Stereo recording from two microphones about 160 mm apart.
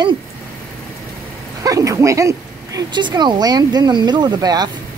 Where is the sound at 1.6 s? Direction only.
20° right (ahead or behind).